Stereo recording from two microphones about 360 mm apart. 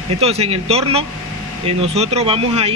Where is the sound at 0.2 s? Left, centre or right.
Centre.